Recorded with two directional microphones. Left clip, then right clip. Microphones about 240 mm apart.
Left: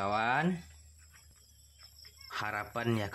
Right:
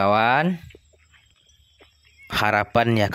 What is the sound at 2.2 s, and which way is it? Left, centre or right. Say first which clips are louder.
Speech: right 16 dB; right.